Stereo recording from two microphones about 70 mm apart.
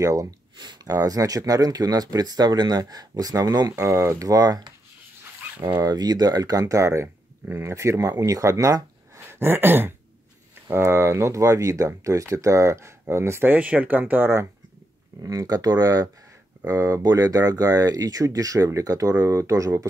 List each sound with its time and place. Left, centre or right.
0.0 s speech: right
3.7 s speech: right
5.8 s speech: right
7.7 s speech: right
13.5 s speech: right
15.2 s speech: right